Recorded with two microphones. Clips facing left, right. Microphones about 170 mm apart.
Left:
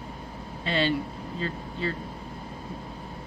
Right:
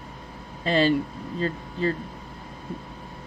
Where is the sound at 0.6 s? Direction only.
40° right (ahead or behind).